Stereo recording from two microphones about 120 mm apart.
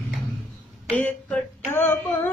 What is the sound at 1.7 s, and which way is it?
Female singing, 20° left (ahead or behind).